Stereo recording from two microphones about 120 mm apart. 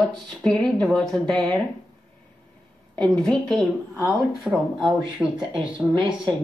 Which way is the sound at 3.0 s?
5° left (ahead or behind).